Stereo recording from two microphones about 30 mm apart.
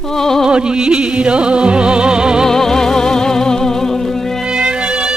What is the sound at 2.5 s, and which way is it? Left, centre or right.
Music, centre.